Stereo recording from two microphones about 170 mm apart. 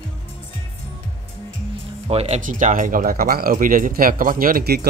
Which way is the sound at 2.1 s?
40° right (ahead or behind).